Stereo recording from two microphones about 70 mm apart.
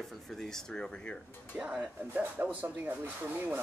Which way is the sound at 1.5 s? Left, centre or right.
Centre.